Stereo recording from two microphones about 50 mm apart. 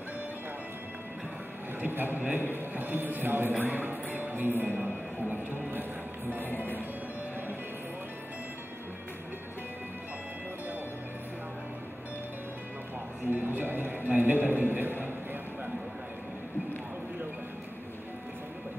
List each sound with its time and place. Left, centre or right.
1.9 s a man's voice: right
4.7 s a sound: right
5.5 s speech: right
13.3 s music: right